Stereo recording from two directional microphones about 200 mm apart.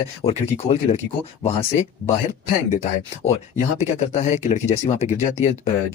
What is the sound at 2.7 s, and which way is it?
Speech, 30° left (ahead or behind).